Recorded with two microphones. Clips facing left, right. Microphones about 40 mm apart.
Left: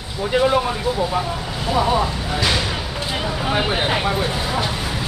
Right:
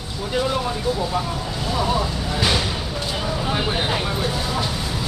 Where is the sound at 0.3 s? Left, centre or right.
Left.